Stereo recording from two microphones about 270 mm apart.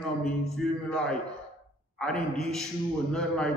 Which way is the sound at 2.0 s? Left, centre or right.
Centre.